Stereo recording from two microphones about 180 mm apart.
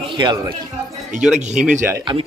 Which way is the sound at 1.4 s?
40° right (ahead or behind).